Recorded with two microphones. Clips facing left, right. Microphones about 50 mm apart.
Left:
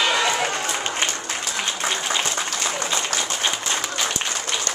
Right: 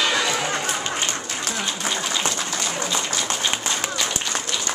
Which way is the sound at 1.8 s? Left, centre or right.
Left.